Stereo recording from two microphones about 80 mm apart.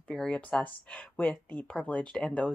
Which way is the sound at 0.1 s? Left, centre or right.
Centre.